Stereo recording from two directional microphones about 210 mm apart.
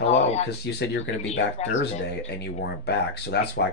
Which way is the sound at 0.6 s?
55° left (ahead or behind).